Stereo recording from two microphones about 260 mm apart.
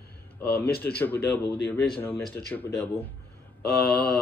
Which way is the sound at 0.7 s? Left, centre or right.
Left.